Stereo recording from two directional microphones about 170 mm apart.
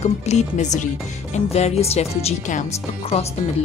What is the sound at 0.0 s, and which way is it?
Speech, 40° left (ahead or behind).